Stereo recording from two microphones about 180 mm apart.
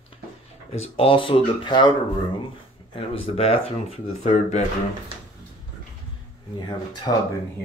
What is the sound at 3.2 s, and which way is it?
Speech, 30° left (ahead or behind).